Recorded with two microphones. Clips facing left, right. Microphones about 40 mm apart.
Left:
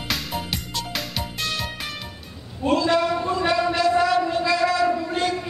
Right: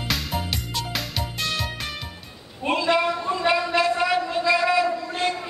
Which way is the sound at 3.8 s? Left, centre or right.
Centre.